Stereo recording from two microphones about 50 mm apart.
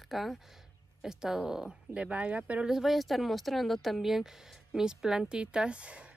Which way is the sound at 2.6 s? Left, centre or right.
Centre.